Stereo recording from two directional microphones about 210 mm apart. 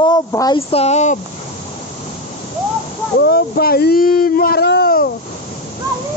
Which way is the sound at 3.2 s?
45° left (ahead or behind).